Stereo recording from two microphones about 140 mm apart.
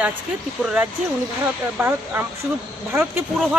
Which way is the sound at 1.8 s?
15° right (ahead or behind).